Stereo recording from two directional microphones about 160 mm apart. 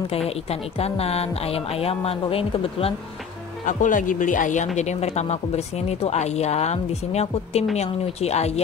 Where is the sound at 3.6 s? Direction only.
55° left (ahead or behind).